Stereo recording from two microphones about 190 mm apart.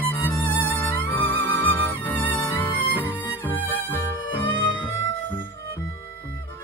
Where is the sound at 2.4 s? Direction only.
25° left (ahead or behind).